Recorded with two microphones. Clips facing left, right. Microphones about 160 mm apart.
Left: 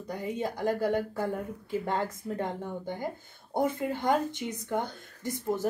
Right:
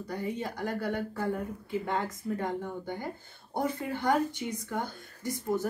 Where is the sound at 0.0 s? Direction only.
20° left (ahead or behind).